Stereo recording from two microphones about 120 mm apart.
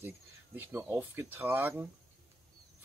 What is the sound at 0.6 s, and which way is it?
Speech, 20° right (ahead or behind).